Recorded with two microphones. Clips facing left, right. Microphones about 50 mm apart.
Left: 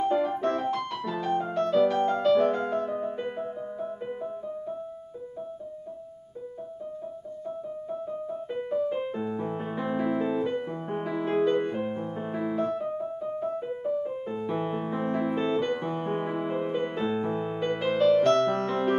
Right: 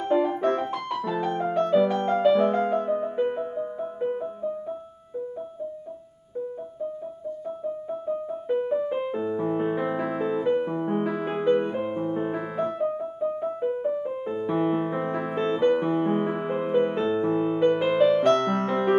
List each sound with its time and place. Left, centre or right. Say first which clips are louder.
0.0 s music: right 2 dB; centre
7.4 s music: right 3 dB; centre
17.0 s music: right 5 dB; centre